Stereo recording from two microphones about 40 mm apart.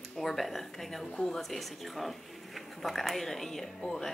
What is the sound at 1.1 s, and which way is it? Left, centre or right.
Speech, centre.